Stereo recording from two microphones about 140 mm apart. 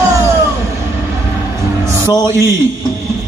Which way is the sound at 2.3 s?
20° right (ahead or behind).